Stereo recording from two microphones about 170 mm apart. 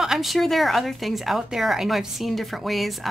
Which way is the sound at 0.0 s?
Centre (ahead or behind).